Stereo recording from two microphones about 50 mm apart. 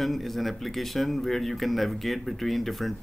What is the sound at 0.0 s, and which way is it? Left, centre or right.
Speech, centre.